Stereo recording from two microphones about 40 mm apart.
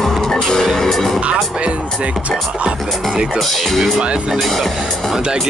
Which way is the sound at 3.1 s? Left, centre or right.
Centre.